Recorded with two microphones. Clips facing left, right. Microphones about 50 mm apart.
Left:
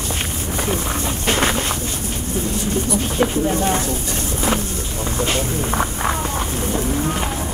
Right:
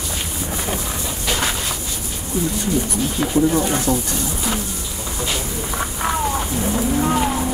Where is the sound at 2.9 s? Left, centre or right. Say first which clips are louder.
Left 2 dB; left.